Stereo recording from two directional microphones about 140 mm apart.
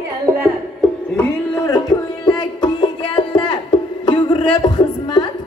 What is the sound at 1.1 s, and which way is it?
Music, 20° left (ahead or behind).